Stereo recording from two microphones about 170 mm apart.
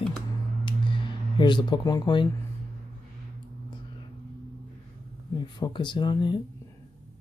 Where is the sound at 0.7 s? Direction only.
30° left (ahead or behind).